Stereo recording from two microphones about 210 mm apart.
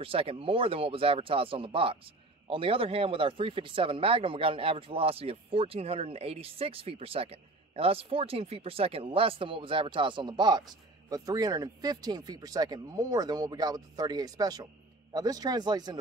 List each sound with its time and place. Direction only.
0.0 s speech: 25° right (ahead or behind)